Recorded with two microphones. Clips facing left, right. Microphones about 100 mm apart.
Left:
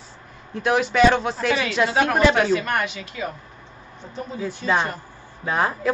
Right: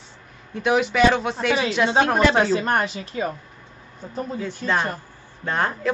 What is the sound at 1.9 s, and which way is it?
A woman's voice, 30° right (ahead or behind).